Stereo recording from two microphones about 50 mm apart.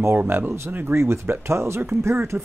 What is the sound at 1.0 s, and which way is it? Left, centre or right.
Speech, right.